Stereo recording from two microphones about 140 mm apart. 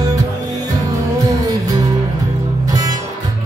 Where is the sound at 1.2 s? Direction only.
25° right (ahead or behind).